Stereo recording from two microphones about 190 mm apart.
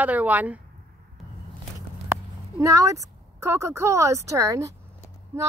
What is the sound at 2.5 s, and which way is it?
A woman's voice, 15° right (ahead or behind).